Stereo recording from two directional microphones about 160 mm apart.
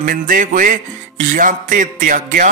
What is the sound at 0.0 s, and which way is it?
Music, 60° right (ahead or behind).